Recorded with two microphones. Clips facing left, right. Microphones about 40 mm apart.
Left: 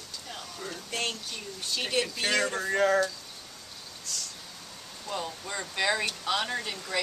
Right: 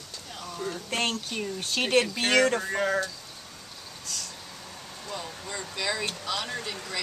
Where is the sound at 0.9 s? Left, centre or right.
Right.